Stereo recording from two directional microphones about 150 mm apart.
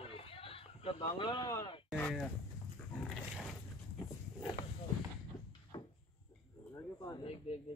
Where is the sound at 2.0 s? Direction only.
5° left (ahead or behind).